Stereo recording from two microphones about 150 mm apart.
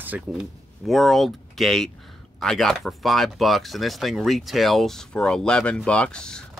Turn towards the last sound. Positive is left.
turn(degrees=5)  # may be behind; listen again after turning